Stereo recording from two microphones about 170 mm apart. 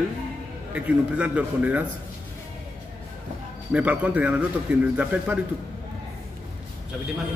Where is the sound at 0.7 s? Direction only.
5° right (ahead or behind).